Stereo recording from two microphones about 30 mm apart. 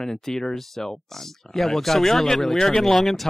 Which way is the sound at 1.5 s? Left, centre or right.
Centre.